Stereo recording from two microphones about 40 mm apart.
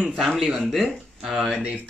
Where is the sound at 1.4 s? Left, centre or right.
Right.